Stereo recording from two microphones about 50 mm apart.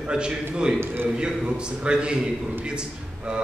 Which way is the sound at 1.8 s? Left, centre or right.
Centre.